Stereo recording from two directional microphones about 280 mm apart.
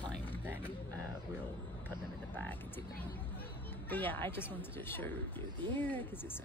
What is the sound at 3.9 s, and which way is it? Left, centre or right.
Speech, centre.